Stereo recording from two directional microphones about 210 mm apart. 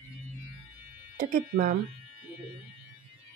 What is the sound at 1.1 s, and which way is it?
Speech, 50° right (ahead or behind).